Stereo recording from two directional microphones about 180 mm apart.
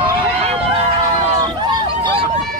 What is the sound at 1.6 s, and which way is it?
Hubbub, 25° right (ahead or behind).